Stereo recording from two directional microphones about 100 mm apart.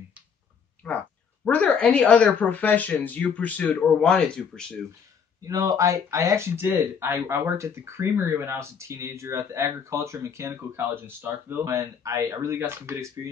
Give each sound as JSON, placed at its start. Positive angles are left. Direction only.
{"t": 0.8, "sound": "speech", "side_deg": 15}
{"t": 5.5, "sound": "speech", "side_deg": -35}
{"t": 11.6, "sound": "speech", "side_deg": -30}